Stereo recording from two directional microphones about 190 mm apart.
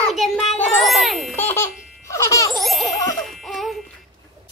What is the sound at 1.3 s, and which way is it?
Baby laughter, 10° left (ahead or behind).